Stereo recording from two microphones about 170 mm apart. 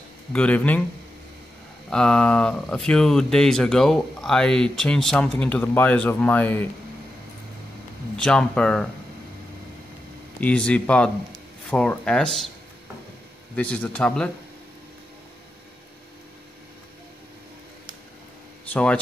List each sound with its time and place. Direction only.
0.3 s speech: 5° left (ahead or behind)
1.9 s speech: 5° left (ahead or behind)
8.2 s speech: 5° left (ahead or behind)
10.4 s speech: 5° left (ahead or behind)
13.6 s speech: 5° left (ahead or behind)
18.7 s speech: 5° left (ahead or behind)